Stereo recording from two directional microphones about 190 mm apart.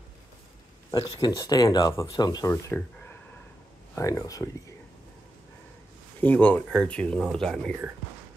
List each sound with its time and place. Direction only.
1.0 s speech: 20° left (ahead or behind)
6.2 s speech: 10° left (ahead or behind)